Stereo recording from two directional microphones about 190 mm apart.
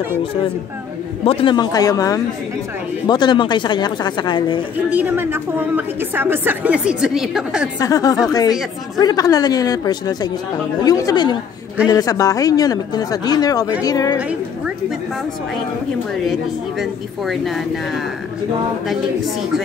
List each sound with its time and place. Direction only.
1.2 s speech: 30° left (ahead or behind)
4.8 s a woman's voice: 10° right (ahead or behind)
7.8 s speech: 20° left (ahead or behind)
16.3 s speech: centre (ahead or behind)